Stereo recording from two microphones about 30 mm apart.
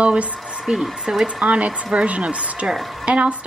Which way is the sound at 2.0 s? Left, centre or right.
Right.